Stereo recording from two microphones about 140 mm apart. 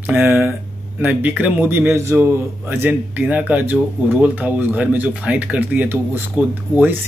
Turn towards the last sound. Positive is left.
turn(degrees=-15)  # may be behind; listen again after turning